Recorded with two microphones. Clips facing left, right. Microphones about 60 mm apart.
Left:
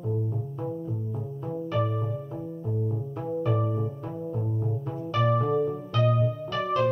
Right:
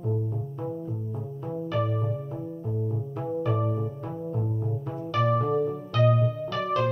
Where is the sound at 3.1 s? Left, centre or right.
Centre.